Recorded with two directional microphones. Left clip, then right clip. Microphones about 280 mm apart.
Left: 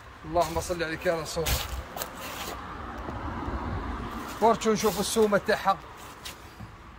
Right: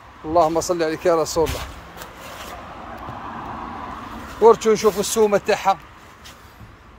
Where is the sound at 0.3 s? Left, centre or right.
Centre.